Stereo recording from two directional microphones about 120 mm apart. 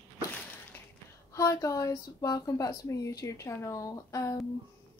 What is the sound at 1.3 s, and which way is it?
A woman's voice, 25° left (ahead or behind).